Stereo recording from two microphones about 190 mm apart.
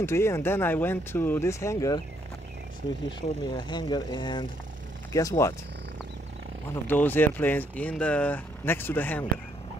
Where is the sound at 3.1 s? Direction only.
25° left (ahead or behind).